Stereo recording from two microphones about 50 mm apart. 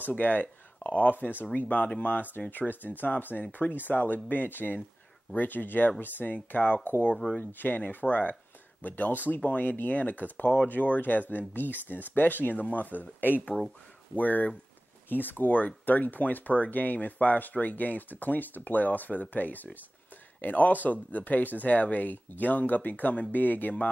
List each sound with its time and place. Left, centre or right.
0.1 s speech: left
13.5 s speech: centre
14.1 s speech: left